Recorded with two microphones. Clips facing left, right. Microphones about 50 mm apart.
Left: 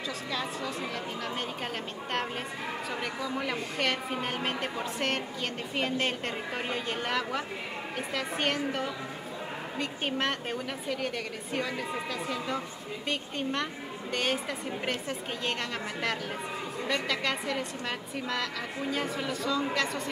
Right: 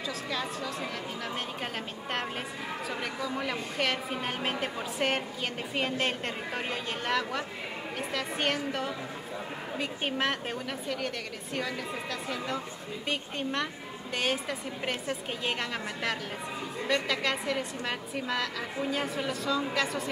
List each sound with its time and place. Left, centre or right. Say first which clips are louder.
3.0 s speech: even; centre
16.8 s speech: right 2 dB; centre